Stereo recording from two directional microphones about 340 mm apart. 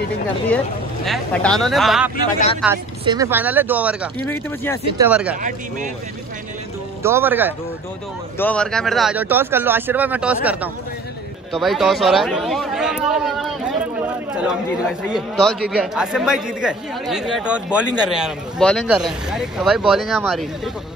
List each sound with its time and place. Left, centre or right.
1.0 s speech: centre
2.3 s speech: centre
2.6 s speech: centre
7.0 s speech: centre